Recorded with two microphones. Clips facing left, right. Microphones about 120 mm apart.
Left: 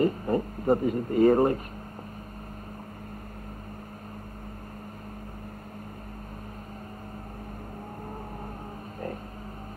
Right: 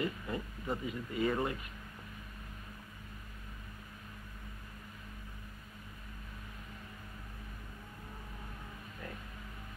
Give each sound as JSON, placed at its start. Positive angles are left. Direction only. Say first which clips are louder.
{"t": 0.0, "sound": "speech", "louder": "left 12 dB", "side_deg": 45}